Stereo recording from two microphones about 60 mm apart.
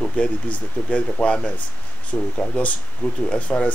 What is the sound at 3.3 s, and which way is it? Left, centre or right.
Speech, centre.